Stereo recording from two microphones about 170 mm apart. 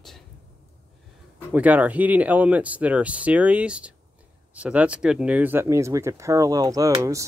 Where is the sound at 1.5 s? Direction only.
10° right (ahead or behind).